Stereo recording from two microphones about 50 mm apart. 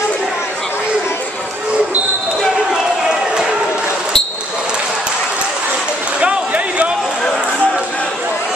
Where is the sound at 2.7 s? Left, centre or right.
Centre.